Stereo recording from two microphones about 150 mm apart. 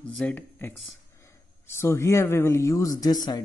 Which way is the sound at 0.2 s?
15° left (ahead or behind).